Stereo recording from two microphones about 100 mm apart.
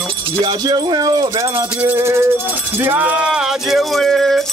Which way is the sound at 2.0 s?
25° right (ahead or behind).